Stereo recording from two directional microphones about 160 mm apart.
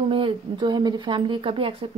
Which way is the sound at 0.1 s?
30° right (ahead or behind).